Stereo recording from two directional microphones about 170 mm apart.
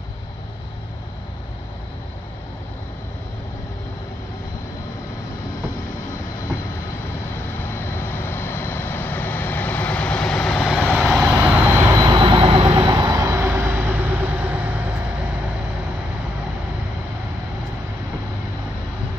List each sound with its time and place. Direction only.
7.6 s vehicle: 15° left (ahead or behind); by 11.9 s 5° right (ahead or behind)
11.9 s jet engine: 25° right (ahead or behind)
12.7 s vehicle: 20° right (ahead or behind)